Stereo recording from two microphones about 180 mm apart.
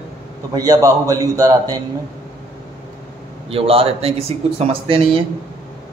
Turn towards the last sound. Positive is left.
turn(degrees=-30)  # may be behind; listen again after turning